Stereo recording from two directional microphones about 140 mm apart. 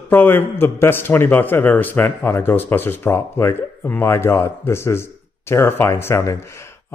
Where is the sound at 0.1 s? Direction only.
15° left (ahead or behind).